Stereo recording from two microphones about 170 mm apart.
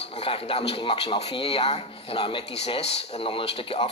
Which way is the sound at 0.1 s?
35° left (ahead or behind).